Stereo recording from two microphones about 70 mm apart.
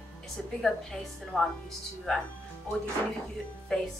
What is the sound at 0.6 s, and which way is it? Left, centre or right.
Speech, centre.